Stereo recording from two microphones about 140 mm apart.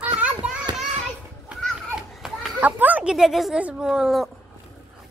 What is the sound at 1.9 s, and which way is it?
A child's voice, 5° right (ahead or behind).